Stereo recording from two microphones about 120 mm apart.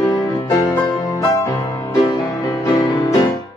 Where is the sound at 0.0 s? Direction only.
30° left (ahead or behind).